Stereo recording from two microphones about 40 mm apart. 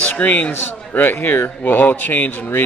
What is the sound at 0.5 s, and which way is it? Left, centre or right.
A man's voice, left.